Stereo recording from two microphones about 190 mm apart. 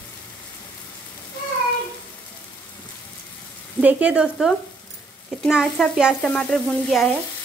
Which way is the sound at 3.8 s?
5° right (ahead or behind).